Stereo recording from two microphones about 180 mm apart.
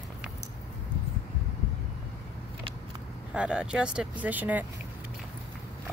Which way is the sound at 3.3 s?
5° right (ahead or behind).